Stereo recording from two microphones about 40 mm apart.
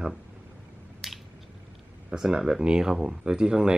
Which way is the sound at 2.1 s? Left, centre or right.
Centre.